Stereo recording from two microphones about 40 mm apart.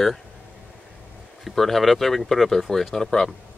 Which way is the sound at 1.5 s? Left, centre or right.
Centre.